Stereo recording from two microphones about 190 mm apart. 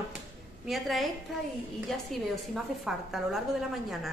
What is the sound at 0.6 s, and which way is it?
Speech, centre (ahead or behind).